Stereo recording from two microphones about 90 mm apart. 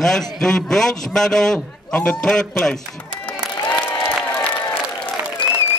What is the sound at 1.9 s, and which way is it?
Speech, 20° left (ahead or behind).